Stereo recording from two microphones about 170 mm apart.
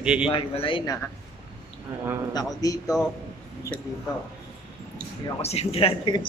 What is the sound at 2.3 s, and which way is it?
Speech, 20° left (ahead or behind).